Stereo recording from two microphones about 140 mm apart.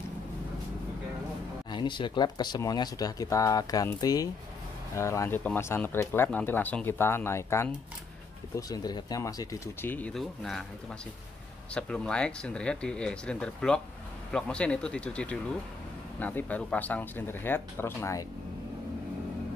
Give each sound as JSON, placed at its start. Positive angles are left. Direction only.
{"t": 1.7, "sound": "speech", "side_deg": 35}
{"t": 9.8, "sound": "speech", "side_deg": 10}
{"t": 11.7, "sound": "speech", "side_deg": 5}